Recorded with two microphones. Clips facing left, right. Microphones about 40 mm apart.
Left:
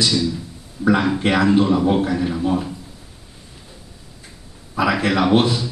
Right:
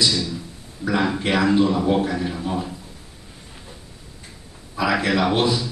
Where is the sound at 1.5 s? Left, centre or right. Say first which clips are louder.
Left 2 dB; centre.